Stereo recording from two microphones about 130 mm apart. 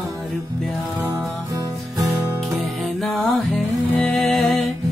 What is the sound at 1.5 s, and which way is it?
Music, 30° right (ahead or behind).